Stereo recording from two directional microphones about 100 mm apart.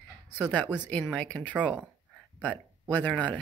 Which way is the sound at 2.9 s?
15° left (ahead or behind).